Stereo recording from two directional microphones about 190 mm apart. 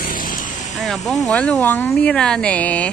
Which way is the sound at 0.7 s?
Centre (ahead or behind).